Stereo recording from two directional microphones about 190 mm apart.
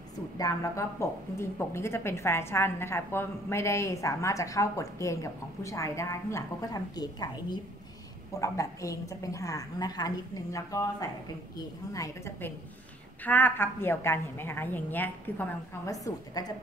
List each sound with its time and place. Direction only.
0.4 s speech: 15° left (ahead or behind)
8.4 s speech: 15° left (ahead or behind)